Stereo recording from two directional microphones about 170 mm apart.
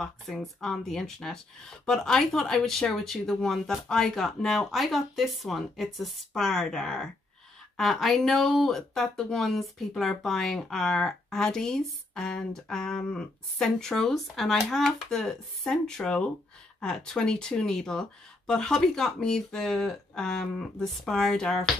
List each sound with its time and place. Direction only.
0.0 s speech: centre (ahead or behind)